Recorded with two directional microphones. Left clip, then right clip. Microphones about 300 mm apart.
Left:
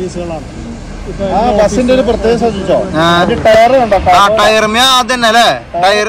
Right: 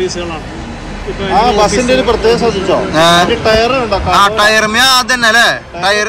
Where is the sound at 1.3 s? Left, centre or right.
Left.